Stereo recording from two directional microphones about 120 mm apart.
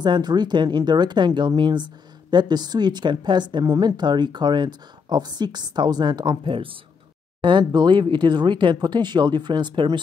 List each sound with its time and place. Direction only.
0.0 s a woman's voice: 35° right (ahead or behind)